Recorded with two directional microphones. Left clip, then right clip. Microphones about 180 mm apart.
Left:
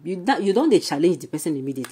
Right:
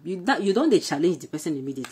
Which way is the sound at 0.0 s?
10° left (ahead or behind).